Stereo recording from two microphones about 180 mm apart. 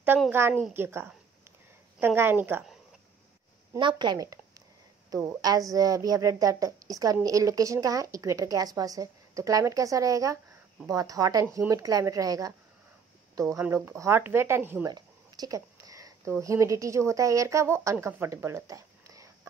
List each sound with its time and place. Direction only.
0.3 s speech: 10° right (ahead or behind)
3.7 s a woman's voice: 25° right (ahead or behind)